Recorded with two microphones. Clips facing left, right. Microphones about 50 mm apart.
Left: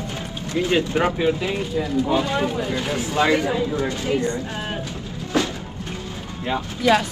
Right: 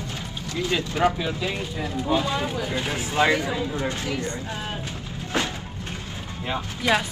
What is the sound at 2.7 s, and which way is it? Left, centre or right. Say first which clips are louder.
Speech: left 3 dB; centre.